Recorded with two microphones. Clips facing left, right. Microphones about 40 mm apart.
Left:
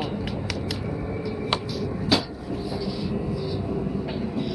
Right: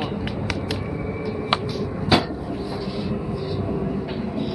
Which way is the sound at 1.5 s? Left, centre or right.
Right.